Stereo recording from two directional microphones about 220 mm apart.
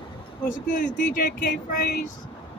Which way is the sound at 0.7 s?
35° left (ahead or behind).